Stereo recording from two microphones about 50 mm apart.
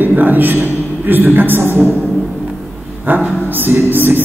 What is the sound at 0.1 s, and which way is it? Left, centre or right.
A man's voice, right.